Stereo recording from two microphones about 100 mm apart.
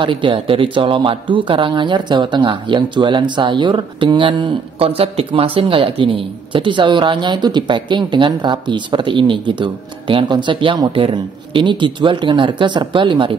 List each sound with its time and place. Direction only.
0.0 s speech: 55° right (ahead or behind)